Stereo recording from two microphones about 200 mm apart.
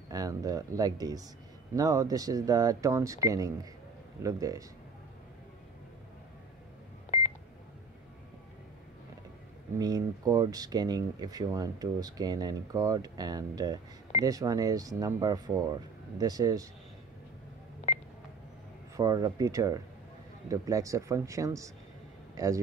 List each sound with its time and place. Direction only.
0.1 s speech: 20° right (ahead or behind)
9.8 s speech: 20° right (ahead or behind)
18.9 s a man's voice: 15° right (ahead or behind)